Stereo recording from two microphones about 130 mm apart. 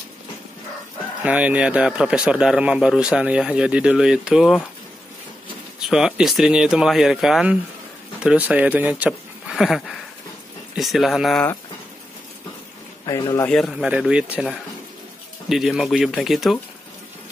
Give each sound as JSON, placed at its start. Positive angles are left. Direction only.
{"t": 1.2, "sound": "speech", "side_deg": -10}
{"t": 5.8, "sound": "speech", "side_deg": -5}
{"t": 13.0, "sound": "a man's voice", "side_deg": 30}
{"t": 13.5, "sound": "speech", "side_deg": 0}